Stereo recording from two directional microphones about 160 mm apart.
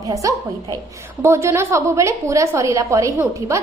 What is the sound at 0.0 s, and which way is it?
A woman's voice, 20° right (ahead or behind).